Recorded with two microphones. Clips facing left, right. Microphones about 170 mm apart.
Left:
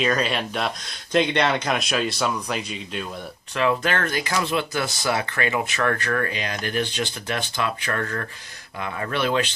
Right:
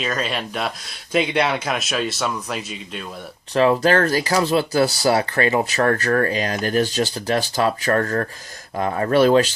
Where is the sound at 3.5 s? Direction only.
35° right (ahead or behind).